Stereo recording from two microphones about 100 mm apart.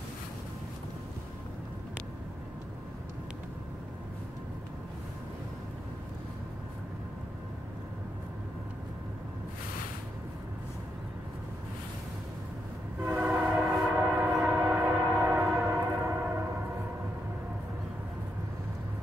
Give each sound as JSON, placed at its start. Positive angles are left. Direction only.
{"t": 13.0, "sound": "train", "side_deg": -20}